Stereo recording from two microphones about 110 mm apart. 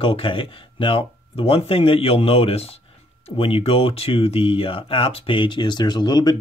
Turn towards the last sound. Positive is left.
turn(degrees=40)  # may be behind; listen again after turning